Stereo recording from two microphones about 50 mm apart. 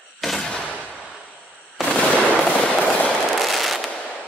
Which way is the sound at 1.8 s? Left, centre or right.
Left.